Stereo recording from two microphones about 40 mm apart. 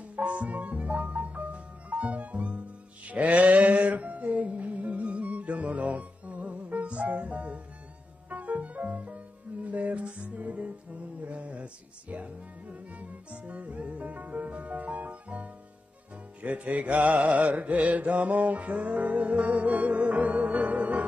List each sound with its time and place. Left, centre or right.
0.0 s music: right